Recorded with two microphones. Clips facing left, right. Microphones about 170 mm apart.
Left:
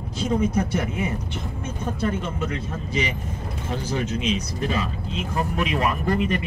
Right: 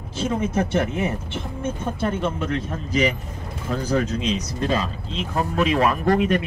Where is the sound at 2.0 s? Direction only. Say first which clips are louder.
Right 3 dB; 55° right (ahead or behind).